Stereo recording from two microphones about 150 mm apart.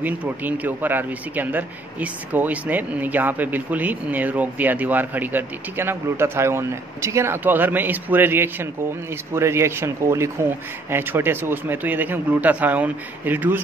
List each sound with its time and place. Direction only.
0.0 s speech: 10° right (ahead or behind)